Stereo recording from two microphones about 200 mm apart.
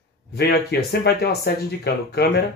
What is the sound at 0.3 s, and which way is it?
Speech, 55° left (ahead or behind).